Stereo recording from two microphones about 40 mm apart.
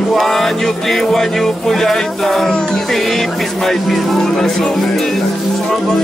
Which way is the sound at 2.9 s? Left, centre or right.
Centre.